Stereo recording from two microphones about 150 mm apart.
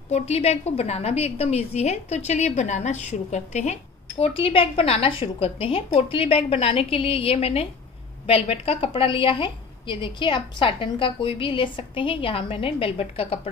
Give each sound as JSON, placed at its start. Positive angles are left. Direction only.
{"t": 0.1, "sound": "a woman's voice", "side_deg": 45}
{"t": 4.2, "sound": "a woman's voice", "side_deg": 40}